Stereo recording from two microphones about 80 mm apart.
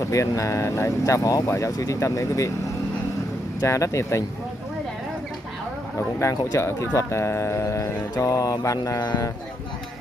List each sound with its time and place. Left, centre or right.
0.0 s speech: left
3.6 s mantra: left
5.9 s mantra: left
9.0 s speech: left